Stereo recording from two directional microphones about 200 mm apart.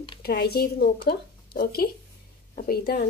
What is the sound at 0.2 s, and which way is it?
Speech, 50° left (ahead or behind).